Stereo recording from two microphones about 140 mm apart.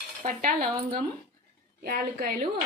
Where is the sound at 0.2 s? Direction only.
70° right (ahead or behind).